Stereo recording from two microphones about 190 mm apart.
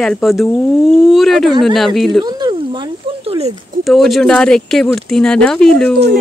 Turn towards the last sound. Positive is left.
turn(degrees=5)  # may be behind; listen again after turning